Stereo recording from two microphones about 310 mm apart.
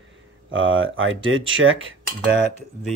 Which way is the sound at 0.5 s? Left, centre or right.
Right.